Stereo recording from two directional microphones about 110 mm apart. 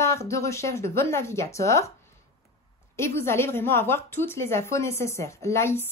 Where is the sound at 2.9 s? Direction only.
25° left (ahead or behind).